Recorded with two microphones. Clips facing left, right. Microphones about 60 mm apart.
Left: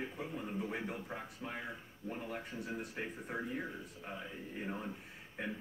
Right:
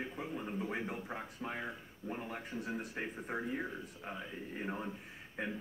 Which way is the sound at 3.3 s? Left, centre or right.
Right.